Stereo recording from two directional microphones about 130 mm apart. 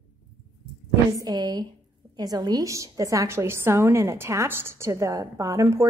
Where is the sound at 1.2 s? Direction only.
30° right (ahead or behind).